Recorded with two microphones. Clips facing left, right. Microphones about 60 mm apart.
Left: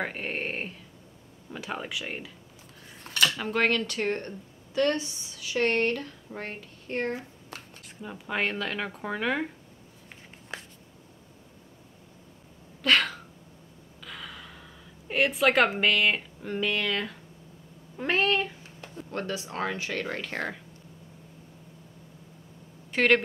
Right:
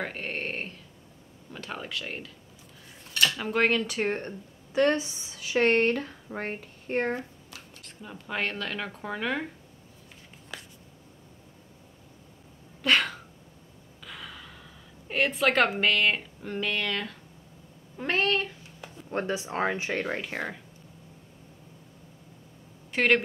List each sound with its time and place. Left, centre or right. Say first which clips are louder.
0.0 s speech: left 1 dB; centre
3.3 s speech: right 1 dB; centre
7.8 s speech: left 2 dB; centre
12.8 s a sound: left 1 dB; centre
14.0 s gasp: left 1 dB; centre
15.0 s a woman's voice: left 1 dB; centre
19.0 s speech: right 3 dB; right
20.1 s speech: even; centre
22.9 s speech: left 1 dB; centre